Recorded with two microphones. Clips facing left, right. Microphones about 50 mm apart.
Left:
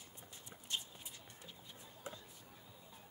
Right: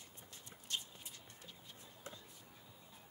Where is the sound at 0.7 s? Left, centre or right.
Centre.